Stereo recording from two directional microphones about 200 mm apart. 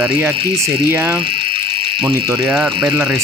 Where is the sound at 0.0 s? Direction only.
10° right (ahead or behind).